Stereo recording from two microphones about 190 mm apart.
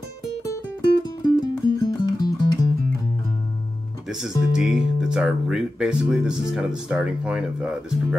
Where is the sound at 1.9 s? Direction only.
20° left (ahead or behind).